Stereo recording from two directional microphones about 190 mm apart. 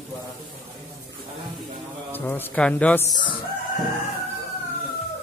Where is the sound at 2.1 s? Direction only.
10° left (ahead or behind).